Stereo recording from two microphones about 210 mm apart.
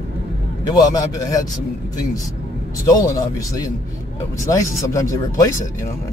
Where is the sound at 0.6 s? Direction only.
15° left (ahead or behind).